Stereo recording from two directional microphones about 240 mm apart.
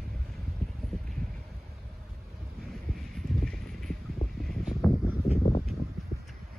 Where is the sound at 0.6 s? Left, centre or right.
Centre.